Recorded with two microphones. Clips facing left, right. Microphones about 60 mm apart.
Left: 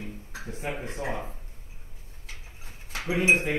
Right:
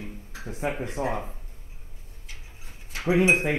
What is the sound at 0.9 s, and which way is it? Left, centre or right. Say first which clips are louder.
Speech: right 4 dB; right.